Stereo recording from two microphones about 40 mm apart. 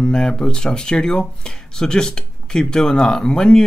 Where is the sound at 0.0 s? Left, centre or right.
Centre.